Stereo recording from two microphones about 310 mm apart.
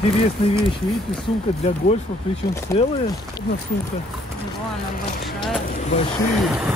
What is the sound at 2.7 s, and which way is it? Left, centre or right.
Speech, centre.